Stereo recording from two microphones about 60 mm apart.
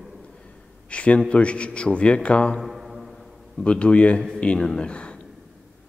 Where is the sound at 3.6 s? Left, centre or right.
Centre.